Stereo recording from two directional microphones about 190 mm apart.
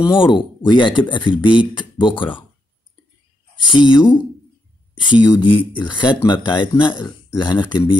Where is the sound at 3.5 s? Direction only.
25° left (ahead or behind).